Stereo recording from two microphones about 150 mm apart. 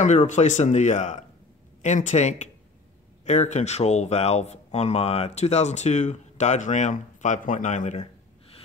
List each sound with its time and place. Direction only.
0.0 s speech: 50° left (ahead or behind)